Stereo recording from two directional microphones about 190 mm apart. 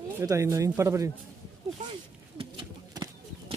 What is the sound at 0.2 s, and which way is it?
Speech, 15° right (ahead or behind).